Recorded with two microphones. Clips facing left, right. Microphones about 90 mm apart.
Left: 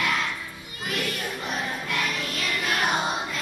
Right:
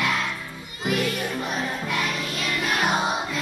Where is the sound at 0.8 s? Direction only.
5° right (ahead or behind).